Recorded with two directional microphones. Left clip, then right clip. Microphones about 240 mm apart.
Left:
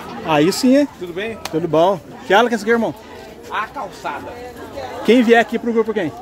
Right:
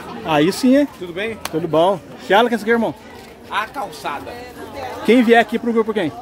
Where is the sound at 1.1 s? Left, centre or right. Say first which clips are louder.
Right 1 dB; centre.